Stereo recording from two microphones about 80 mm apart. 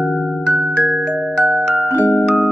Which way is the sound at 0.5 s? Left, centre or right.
Centre.